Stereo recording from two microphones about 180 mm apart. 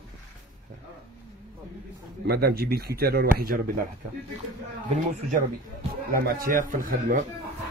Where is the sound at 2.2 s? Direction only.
60° right (ahead or behind).